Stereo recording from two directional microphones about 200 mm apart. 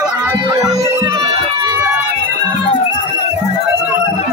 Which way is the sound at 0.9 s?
25° right (ahead or behind).